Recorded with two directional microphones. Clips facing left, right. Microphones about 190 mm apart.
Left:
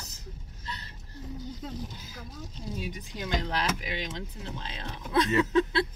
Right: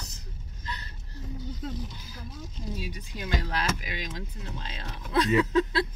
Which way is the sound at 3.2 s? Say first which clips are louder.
Even; 20° left (ahead or behind).